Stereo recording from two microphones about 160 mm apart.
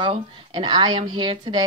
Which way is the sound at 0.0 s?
30° right (ahead or behind).